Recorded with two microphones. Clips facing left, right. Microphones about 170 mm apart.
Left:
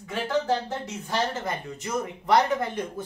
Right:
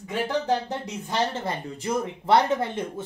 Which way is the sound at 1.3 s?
30° right (ahead or behind).